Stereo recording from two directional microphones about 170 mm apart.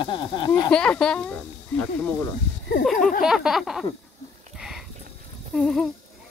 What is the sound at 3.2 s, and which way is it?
Speech, 5° right (ahead or behind).